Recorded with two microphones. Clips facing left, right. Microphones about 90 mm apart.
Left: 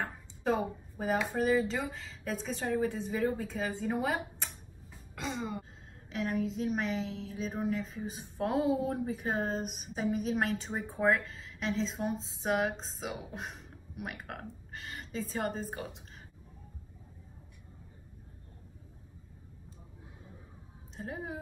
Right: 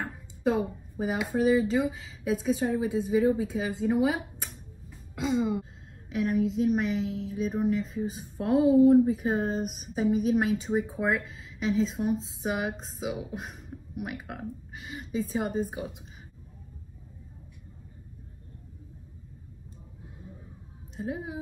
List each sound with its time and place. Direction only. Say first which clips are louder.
0.0 s a woman's voice: right 5 dB; 5° right (ahead or behind)
20.9 s a woman's voice: right 5 dB; centre (ahead or behind)